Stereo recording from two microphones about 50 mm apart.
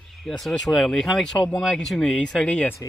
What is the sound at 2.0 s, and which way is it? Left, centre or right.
Speech, centre.